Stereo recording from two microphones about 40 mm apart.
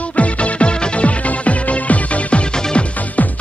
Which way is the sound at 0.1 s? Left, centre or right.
Left.